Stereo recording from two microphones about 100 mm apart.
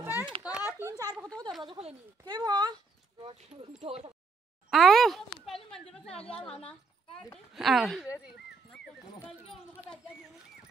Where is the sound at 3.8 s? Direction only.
75° right (ahead or behind).